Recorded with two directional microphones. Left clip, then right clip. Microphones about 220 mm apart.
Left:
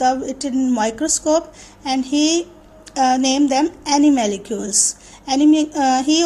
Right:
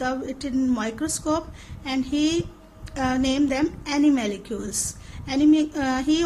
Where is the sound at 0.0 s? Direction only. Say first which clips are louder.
Left 9 dB; 10° left (ahead or behind).